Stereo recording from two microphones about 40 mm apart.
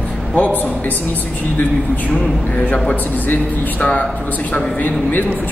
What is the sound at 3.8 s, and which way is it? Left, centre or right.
Speech, left.